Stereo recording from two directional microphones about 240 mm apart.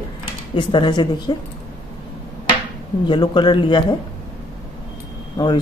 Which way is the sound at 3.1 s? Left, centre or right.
Centre.